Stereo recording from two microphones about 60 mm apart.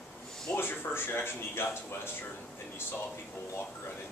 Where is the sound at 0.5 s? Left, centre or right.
Left.